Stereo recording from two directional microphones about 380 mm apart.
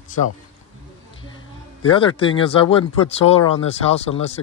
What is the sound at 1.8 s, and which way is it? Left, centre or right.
A man's voice, centre.